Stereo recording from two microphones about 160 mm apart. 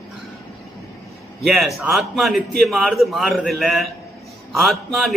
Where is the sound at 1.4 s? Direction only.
Centre (ahead or behind).